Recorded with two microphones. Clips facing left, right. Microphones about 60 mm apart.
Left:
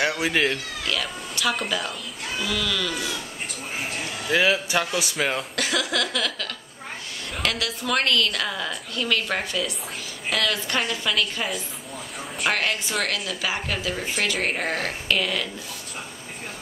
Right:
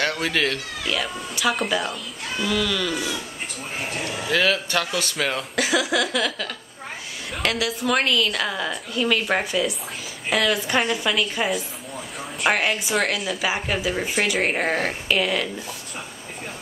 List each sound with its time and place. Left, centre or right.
0.0 s speech: centre
0.8 s a woman's voice: centre
4.3 s speech: centre
5.6 s a woman's voice: centre